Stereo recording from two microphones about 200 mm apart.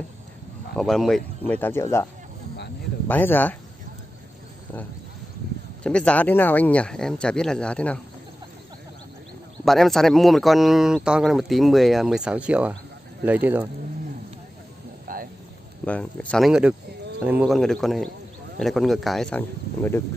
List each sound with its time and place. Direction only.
0.7 s speech: centre (ahead or behind)
3.1 s speech: 10° left (ahead or behind)
5.9 s speech: 5° left (ahead or behind)
9.7 s speech: centre (ahead or behind)
15.1 s a sound: 45° right (ahead or behind)
15.8 s speech: 5° left (ahead or behind)